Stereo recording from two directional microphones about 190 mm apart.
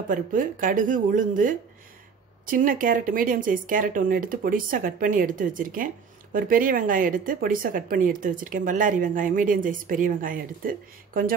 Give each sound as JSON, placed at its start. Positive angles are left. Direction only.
{"t": 0.1, "sound": "speech", "side_deg": -45}